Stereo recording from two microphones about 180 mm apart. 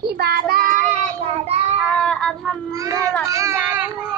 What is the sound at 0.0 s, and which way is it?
Child singing, 60° right (ahead or behind).